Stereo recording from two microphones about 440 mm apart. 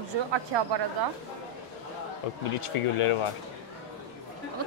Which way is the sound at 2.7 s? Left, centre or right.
Left.